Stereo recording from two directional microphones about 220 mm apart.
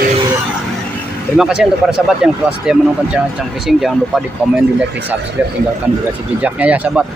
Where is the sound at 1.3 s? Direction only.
5° right (ahead or behind).